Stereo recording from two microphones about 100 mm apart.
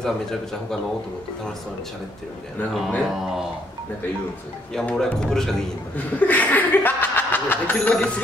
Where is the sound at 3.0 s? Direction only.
5° right (ahead or behind).